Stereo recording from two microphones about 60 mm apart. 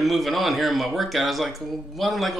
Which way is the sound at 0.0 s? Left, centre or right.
Centre.